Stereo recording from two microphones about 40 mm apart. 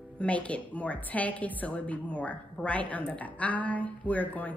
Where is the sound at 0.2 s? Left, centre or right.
Left.